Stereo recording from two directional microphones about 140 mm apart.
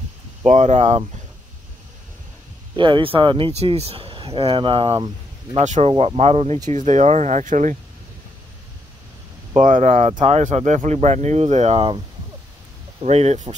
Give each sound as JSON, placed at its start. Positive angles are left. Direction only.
{"t": 0.4, "sound": "speech", "side_deg": -55}
{"t": 2.7, "sound": "speech", "side_deg": -35}
{"t": 5.6, "sound": "speech", "side_deg": -55}
{"t": 6.7, "sound": "speech", "side_deg": -55}
{"t": 9.6, "sound": "speech", "side_deg": -65}
{"t": 13.0, "sound": "speech", "side_deg": -50}